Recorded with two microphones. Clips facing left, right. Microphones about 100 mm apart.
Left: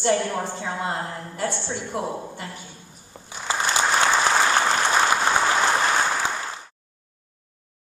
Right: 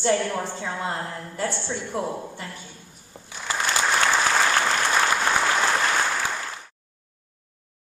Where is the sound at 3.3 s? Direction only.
25° left (ahead or behind).